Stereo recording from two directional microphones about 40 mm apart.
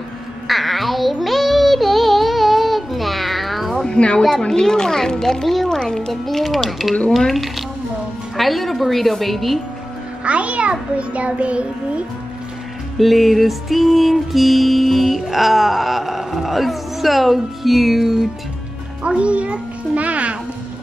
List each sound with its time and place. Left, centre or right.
0.5 s music: centre
3.8 s a sound: left
4.5 s a child's voice: centre
5.8 s music: centre
10.2 s a child's voice: right
13.0 s music: centre
19.0 s a child's voice: right